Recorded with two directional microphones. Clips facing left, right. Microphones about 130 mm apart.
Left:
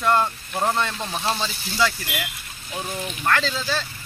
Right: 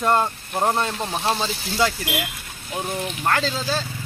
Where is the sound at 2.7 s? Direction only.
15° right (ahead or behind).